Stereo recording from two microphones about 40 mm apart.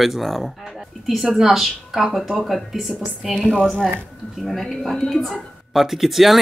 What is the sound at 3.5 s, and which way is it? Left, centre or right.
Speech, left.